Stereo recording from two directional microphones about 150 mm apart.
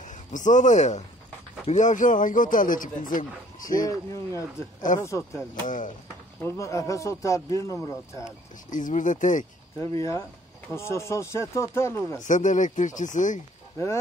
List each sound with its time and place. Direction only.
0.0 s a man's voice: 55° left (ahead or behind)
3.8 s speech: 20° left (ahead or behind)
5.5 s a man's voice: 60° left (ahead or behind)
6.4 s speech: 20° left (ahead or behind)
8.6 s a man's voice: 60° left (ahead or behind)
9.8 s speech: 20° left (ahead or behind)
12.2 s a man's voice: 55° left (ahead or behind)